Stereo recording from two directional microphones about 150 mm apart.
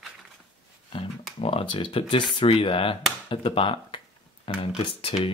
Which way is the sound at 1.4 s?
40° left (ahead or behind).